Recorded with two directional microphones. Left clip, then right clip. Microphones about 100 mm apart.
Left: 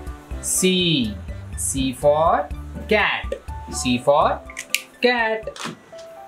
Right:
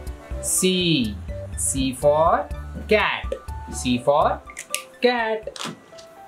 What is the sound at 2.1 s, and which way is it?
Speech, 30° right (ahead or behind).